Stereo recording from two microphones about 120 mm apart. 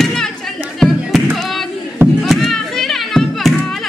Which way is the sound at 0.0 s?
5° left (ahead or behind).